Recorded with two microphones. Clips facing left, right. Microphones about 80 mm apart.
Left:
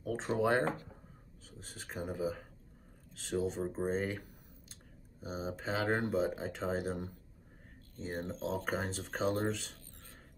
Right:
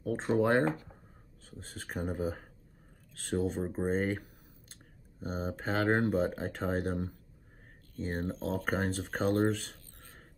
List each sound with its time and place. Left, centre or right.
0.0 s speech: right
1.8 s speech: right
5.2 s speech: right